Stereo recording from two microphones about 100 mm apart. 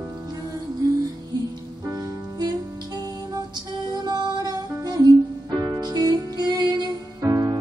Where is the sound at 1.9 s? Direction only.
35° right (ahead or behind).